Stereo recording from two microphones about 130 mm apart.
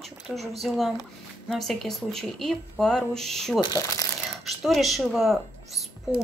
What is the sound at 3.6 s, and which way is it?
Speech, 30° left (ahead or behind).